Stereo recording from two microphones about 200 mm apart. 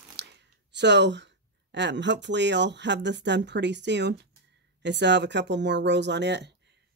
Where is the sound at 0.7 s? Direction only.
60° right (ahead or behind).